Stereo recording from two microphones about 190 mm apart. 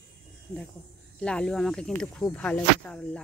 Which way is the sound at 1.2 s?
5° left (ahead or behind).